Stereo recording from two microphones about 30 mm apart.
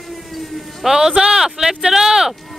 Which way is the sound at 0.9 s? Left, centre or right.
Right.